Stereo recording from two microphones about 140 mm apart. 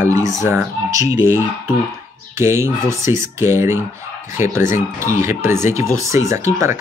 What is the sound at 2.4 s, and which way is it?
Speech, 20° right (ahead or behind).